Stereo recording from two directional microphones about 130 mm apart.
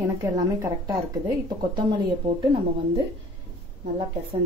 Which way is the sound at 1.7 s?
35° right (ahead or behind).